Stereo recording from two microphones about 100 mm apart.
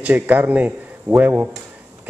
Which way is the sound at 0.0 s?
15° right (ahead or behind).